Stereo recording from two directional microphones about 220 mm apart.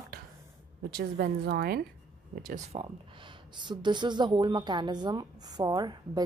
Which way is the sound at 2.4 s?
30° right (ahead or behind).